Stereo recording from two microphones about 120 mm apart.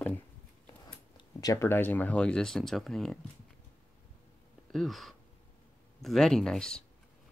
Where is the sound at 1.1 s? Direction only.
30° left (ahead or behind); by 3.2 s 5° left (ahead or behind).